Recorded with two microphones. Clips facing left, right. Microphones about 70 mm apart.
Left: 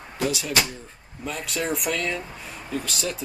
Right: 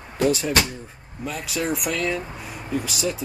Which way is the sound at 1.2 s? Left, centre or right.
Centre.